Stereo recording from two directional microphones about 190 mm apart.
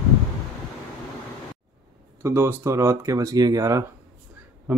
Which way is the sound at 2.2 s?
15° right (ahead or behind).